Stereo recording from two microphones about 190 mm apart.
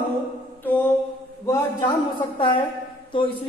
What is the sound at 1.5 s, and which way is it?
A man's voice, 15° left (ahead or behind).